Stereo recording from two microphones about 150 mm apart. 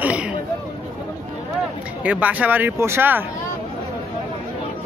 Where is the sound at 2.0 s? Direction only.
10° right (ahead or behind).